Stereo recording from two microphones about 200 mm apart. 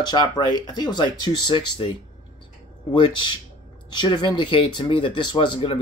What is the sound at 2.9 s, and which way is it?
Speech, 25° left (ahead or behind).